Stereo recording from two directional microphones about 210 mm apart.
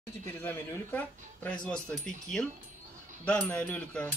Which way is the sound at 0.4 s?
10° left (ahead or behind).